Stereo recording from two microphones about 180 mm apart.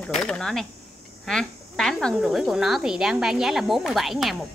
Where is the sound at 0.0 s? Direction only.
5° left (ahead or behind).